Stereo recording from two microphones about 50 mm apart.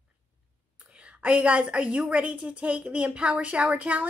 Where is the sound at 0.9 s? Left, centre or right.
Right.